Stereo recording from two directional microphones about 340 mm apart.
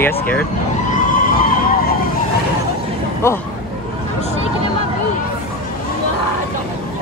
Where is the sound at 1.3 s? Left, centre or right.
Left.